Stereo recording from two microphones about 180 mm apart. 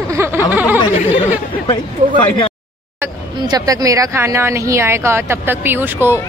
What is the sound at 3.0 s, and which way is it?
Speech, 20° right (ahead or behind).